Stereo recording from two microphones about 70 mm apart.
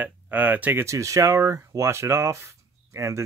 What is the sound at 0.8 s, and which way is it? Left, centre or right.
Speech, right.